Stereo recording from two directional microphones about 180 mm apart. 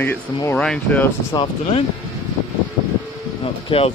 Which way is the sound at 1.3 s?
30° left (ahead or behind).